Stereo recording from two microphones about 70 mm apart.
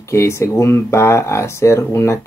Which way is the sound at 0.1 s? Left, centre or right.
Left.